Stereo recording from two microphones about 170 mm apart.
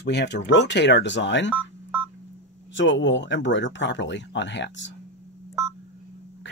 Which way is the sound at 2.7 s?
90° left.